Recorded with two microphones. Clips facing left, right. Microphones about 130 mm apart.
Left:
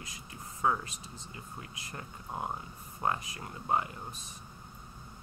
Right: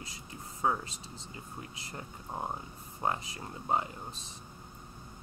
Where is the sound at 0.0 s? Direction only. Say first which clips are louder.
Right 1 dB; 30° right (ahead or behind).